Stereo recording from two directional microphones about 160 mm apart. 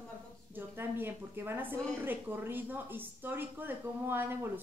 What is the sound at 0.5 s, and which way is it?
Speech, 15° right (ahead or behind).